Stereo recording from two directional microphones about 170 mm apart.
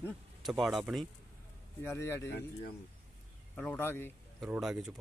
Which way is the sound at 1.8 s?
15° left (ahead or behind).